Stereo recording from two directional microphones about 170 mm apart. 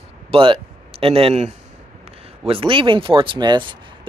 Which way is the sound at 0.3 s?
35° right (ahead or behind).